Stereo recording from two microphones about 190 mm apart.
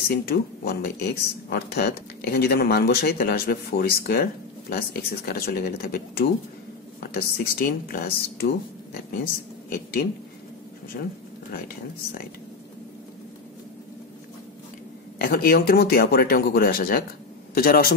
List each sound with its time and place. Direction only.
0.1 s speech: 55° left (ahead or behind)
10.9 s speech: 50° left (ahead or behind)
15.1 s speech: 55° left (ahead or behind)